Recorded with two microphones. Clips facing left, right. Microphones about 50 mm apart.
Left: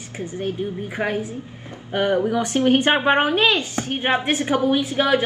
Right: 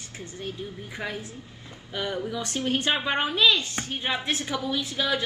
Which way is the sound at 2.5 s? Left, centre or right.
Left.